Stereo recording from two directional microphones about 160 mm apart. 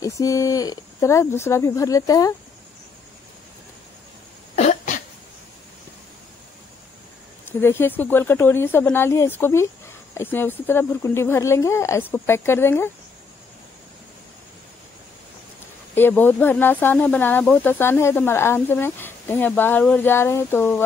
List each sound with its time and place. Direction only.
0.0 s speech: 20° left (ahead or behind)
4.6 s cough: 45° left (ahead or behind)
7.4 s speech: 15° left (ahead or behind)
15.9 s speech: 15° left (ahead or behind)